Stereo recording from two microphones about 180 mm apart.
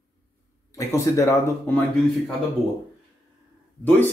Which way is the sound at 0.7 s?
15° left (ahead or behind).